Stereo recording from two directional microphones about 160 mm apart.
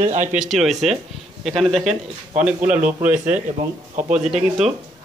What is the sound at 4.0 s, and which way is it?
Speech, 50° right (ahead or behind).